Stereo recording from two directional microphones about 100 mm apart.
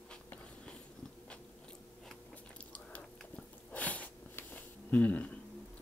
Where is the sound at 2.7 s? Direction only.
15° left (ahead or behind).